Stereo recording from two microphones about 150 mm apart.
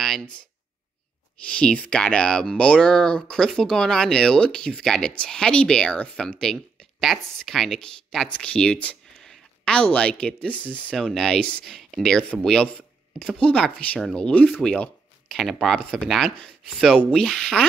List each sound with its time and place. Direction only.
1.4 s speech: 5° left (ahead or behind)